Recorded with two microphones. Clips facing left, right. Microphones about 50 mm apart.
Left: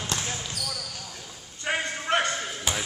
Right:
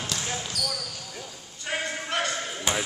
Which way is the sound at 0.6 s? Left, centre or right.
Left.